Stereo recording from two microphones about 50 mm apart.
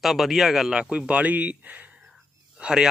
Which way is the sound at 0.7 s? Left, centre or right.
Centre.